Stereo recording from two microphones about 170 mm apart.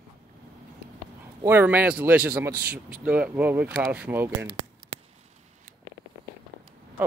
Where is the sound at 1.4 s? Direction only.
10° right (ahead or behind).